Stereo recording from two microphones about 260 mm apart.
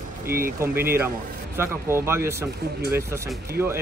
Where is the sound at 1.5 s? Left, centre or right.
Centre.